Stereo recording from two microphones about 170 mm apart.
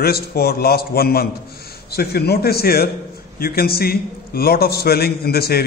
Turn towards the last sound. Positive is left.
turn(degrees=65)  # may be behind; listen again after turning